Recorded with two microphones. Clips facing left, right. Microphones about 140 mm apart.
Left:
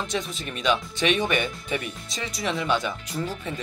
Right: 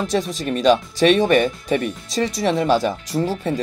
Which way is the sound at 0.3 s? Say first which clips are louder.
Right 10 dB; 40° right (ahead or behind).